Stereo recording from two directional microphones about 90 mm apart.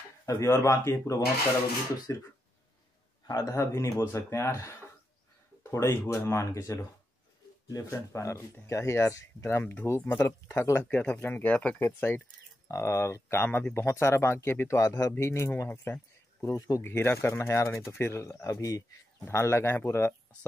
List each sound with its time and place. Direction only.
0.4 s speech: 30° left (ahead or behind)
3.3 s speech: 40° left (ahead or behind); by 11.9 s 15° left (ahead or behind)
12.6 s speech: 35° left (ahead or behind)
14.8 s speech: 40° left (ahead or behind); by 16.5 s 25° left (ahead or behind)
16.5 s speech: 40° left (ahead or behind)
16.8 s speech: 25° left (ahead or behind)